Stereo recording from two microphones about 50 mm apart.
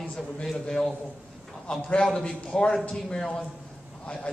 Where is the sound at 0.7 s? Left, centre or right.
Centre.